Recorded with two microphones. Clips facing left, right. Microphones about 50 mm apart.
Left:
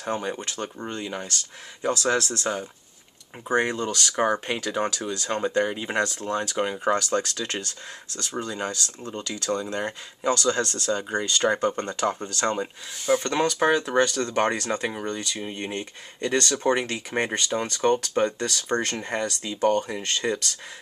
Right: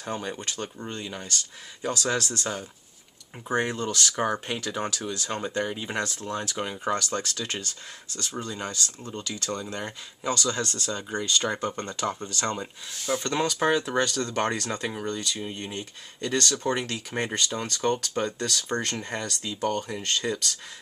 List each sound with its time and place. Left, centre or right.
0.1 s speech: centre; by 2.5 s left
3.4 s speech: centre
6.1 s speech: left
6.4 s speech: centre
8.2 s speech: left
9.7 s speech: left
15.7 s speech: left